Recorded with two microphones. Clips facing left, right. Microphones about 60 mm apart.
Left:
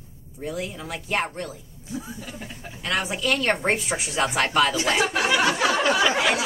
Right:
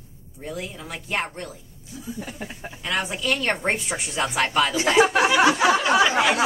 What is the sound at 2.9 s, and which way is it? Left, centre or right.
A woman's voice, centre.